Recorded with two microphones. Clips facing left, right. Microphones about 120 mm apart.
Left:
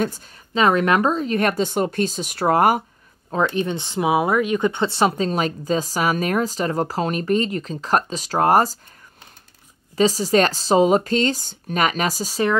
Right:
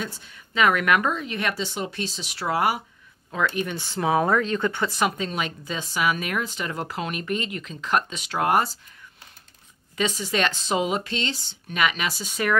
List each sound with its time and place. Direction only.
0.6 s speech: 30° left (ahead or behind); by 2.8 s 45° left (ahead or behind)
3.4 s speech: 25° left (ahead or behind); by 8.7 s 40° left (ahead or behind)
9.9 s speech: 35° left (ahead or behind)